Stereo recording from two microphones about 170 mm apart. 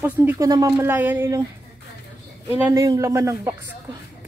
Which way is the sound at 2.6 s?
15° right (ahead or behind).